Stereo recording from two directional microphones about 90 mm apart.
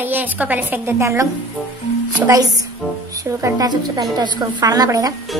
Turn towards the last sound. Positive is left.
turn(degrees=-40)  # may be behind; listen again after turning